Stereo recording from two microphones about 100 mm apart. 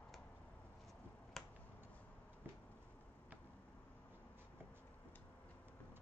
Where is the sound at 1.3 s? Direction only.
5° left (ahead or behind).